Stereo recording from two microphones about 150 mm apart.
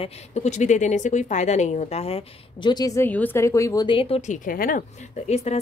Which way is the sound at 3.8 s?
40° left (ahead or behind).